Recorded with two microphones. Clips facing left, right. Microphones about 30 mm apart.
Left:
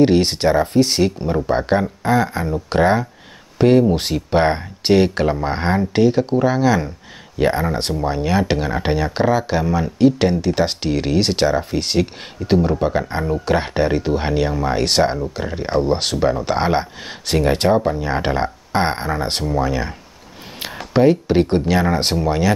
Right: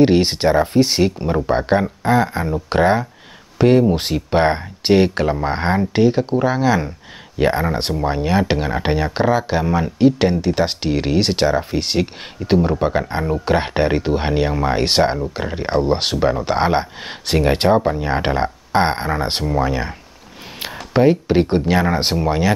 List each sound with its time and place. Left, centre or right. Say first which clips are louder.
0.0 s speech: even; centre
9.7 s speech: right 1 dB; centre
9.9 s speech: even; centre